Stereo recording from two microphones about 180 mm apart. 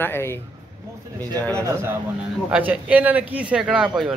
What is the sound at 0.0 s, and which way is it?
Speech, 15° left (ahead or behind).